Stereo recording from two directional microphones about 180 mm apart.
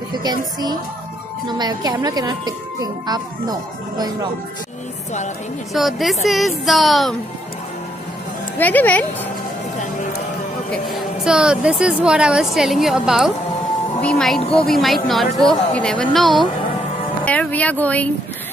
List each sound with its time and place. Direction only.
0.1 s speech: 25° right (ahead or behind)
5.7 s speech: centre (ahead or behind)
8.5 s speech: 10° left (ahead or behind)
10.7 s speech: centre (ahead or behind)